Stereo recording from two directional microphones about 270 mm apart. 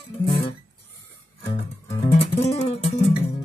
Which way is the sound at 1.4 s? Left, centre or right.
Left.